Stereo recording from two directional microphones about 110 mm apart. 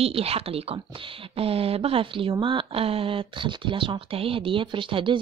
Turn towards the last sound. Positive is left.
turn(degrees=-50)  # may be behind; listen again after turning